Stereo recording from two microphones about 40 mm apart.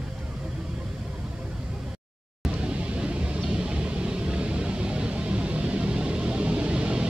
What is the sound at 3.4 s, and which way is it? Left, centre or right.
Music, right.